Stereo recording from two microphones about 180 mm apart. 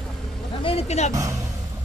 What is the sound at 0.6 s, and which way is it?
Speech, 35° left (ahead or behind).